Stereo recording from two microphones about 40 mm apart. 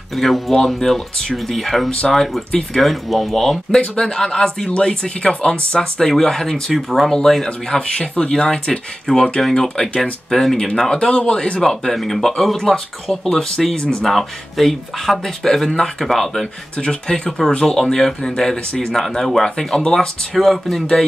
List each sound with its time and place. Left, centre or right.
0.1 s speech: centre
3.8 s speech: centre
5.8 s speech: centre
6.7 s speech: centre
7.1 s speech: centre
7.8 s speech: left; by 10.6 s centre
10.9 s speech: left
11.6 s speech: centre
13.7 s speech: left
14.0 s speech: centre
16.7 s speech: left
17.6 s speech: centre